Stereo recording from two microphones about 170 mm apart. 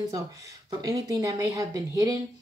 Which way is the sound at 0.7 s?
20° right (ahead or behind).